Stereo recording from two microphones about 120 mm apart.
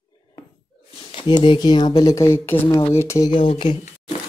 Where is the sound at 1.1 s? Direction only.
45° left (ahead or behind); by 3.2 s 20° left (ahead or behind).